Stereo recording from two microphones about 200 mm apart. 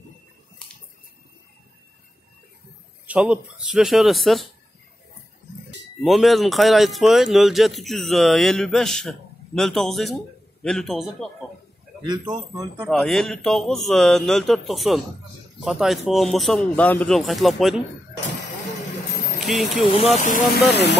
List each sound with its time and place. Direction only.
3.1 s a man's voice: 5° right (ahead or behind)
6.0 s a man's voice: centre (ahead or behind)
12.1 s speech: 20° right (ahead or behind)
12.9 s a man's voice: centre (ahead or behind)
19.4 s speech: centre (ahead or behind)
19.9 s speech: 30° left (ahead or behind)
20.7 s speech: 60° left (ahead or behind)